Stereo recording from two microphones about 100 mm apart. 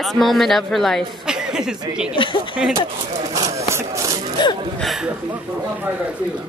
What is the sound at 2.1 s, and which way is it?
Speech, 60° left (ahead or behind).